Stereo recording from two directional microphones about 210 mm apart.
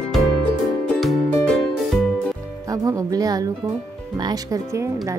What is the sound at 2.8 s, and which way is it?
Music, 15° right (ahead or behind).